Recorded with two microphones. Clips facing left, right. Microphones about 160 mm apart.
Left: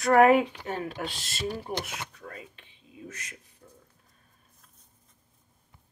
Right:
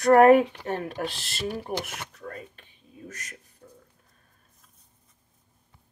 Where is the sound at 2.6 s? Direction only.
45° right (ahead or behind).